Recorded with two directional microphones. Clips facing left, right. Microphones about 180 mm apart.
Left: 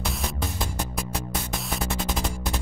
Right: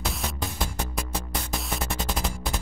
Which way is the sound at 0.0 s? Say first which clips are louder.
Left 1 dB; centre (ahead or behind).